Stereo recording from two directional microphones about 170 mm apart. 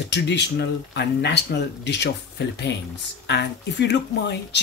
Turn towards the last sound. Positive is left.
turn(degrees=90)